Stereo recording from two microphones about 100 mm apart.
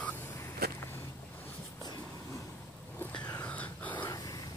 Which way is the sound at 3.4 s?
15° left (ahead or behind).